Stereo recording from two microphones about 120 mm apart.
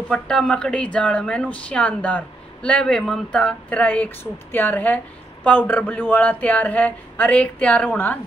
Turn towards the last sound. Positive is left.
turn(degrees=10)  # may be behind; listen again after turning